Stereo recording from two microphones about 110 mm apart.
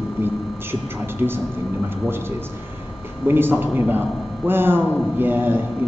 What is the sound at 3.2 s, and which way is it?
A man's voice, 20° right (ahead or behind).